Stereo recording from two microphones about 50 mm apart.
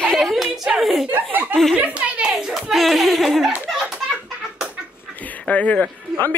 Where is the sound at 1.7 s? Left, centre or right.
Right; by 2.7 s centre.